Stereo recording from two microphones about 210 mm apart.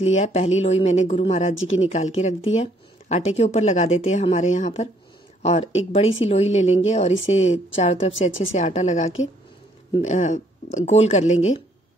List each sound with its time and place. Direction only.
0.0 s speech: 30° left (ahead or behind)
1.5 s speech: 65° left (ahead or behind)
1.8 s a woman's voice: 30° left (ahead or behind)